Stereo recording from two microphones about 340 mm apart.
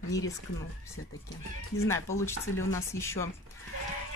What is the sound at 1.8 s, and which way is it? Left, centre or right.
Speech, centre.